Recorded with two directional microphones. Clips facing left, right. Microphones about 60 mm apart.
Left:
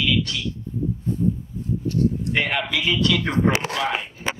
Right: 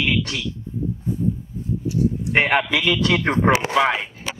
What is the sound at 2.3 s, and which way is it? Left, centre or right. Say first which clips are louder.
Speech: right 5 dB; right.